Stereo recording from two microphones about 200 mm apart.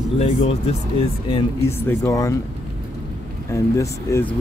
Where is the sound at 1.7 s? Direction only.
15° left (ahead or behind).